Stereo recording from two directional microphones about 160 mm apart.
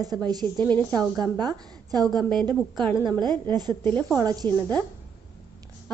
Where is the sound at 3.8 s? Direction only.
10° left (ahead or behind).